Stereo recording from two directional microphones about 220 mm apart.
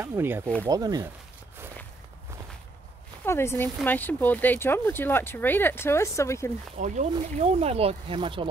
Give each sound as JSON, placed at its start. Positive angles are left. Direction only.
{"t": 0.0, "sound": "speech", "side_deg": -10}
{"t": 3.3, "sound": "speech", "side_deg": 10}
{"t": 6.8, "sound": "speech", "side_deg": -30}